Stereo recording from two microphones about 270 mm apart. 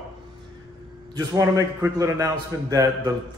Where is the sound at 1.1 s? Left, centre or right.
Centre.